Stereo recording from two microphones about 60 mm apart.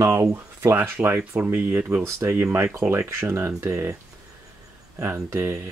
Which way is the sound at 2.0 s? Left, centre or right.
Right.